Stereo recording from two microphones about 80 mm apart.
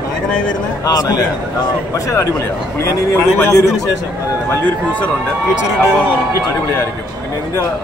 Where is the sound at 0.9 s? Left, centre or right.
Left.